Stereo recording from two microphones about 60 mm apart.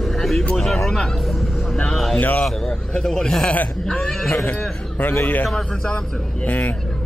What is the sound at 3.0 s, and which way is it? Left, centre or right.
Speech, centre.